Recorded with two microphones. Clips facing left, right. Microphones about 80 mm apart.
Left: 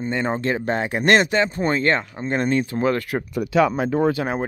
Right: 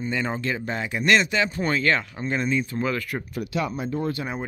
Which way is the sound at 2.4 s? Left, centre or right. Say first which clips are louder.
Left 5 dB; left.